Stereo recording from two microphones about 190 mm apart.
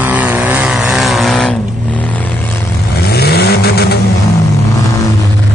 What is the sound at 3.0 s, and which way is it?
Vehicle, 55° left (ahead or behind).